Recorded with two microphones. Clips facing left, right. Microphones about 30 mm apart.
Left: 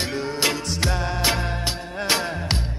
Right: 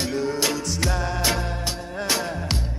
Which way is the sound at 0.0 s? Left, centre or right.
Left.